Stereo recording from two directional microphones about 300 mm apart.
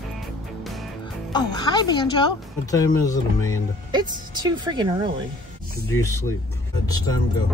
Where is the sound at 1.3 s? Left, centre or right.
Centre.